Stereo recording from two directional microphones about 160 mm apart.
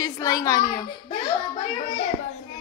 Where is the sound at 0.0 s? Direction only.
20° left (ahead or behind).